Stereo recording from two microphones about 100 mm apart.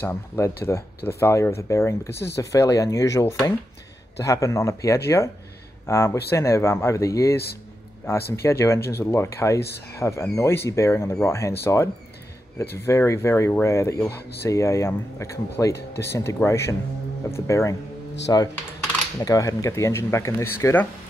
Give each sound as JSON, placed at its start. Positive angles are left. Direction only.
{"t": 0.0, "sound": "speech", "side_deg": 25}
{"t": 18.3, "sound": "coin", "side_deg": 35}
{"t": 19.1, "sound": "speech", "side_deg": 35}